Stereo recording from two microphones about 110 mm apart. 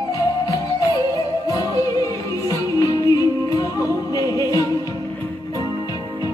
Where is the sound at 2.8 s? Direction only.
30° left (ahead or behind).